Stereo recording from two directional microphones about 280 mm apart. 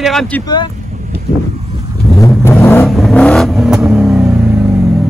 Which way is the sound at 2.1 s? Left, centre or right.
Centre.